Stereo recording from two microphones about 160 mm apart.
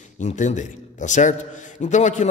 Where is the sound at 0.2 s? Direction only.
50° left (ahead or behind).